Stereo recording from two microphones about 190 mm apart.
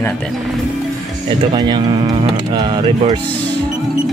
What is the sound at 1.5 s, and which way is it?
Speech, 20° right (ahead or behind).